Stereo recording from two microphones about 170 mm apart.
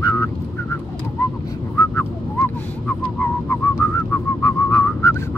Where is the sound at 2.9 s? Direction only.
10° left (ahead or behind).